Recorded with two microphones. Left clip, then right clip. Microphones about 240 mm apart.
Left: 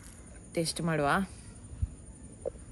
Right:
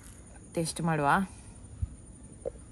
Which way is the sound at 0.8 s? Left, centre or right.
Right.